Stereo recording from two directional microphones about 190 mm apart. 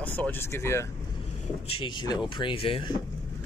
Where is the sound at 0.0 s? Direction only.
10° left (ahead or behind).